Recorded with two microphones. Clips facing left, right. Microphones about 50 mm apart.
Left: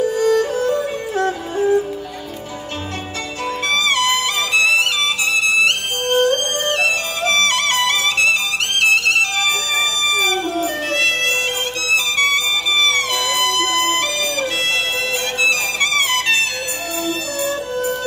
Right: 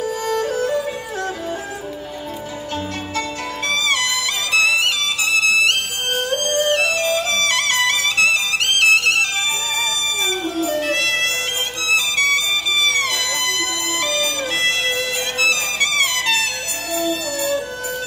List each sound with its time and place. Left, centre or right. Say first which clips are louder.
0.7 s music: left 3 dB; left
3.6 s music: left 3 dB; left
12.9 s music: left 2 dB; left
15.4 s music: left 1 dB; left